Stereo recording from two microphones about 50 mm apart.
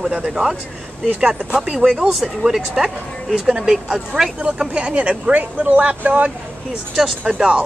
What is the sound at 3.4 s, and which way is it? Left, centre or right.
Speech, centre.